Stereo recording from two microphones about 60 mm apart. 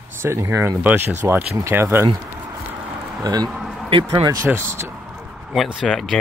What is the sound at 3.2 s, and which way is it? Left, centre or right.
Speech, right.